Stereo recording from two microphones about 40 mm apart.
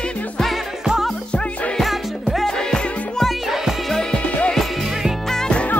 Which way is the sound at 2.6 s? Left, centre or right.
Centre.